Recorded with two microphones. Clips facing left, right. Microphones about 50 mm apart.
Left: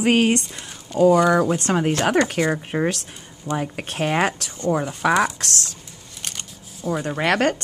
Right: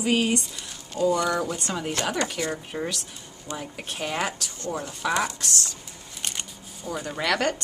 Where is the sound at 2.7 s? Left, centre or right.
Left.